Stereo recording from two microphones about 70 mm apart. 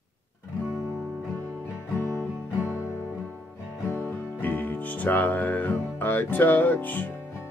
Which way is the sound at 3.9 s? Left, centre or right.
Left.